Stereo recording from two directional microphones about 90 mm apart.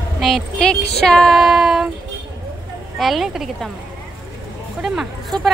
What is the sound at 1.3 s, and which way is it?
Child singing, 5° right (ahead or behind).